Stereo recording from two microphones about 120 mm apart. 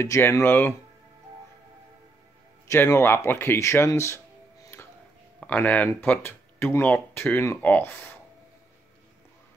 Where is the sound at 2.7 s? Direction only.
25° left (ahead or behind).